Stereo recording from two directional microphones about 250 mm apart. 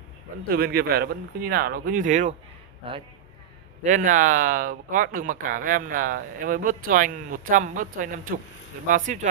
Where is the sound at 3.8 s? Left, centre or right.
Right.